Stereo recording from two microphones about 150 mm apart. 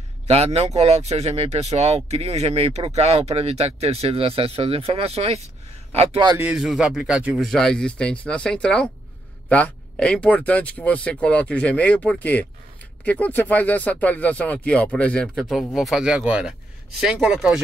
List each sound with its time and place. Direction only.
0.3 s speech: 45° right (ahead or behind)
6.4 s speech: 5° right (ahead or behind)